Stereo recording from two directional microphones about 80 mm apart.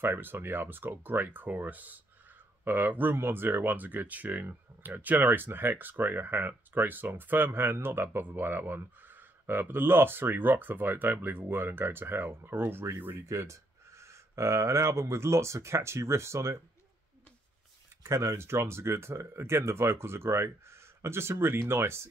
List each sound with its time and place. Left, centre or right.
0.0 s speech: right
18.0 s speech: right